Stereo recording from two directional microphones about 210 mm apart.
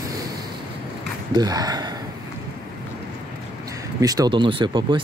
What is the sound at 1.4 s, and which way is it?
Speech, 20° right (ahead or behind).